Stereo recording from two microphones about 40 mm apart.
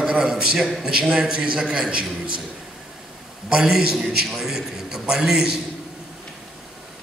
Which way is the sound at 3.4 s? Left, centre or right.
Centre.